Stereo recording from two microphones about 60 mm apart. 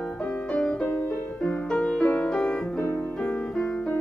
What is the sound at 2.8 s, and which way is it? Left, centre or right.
Music, left.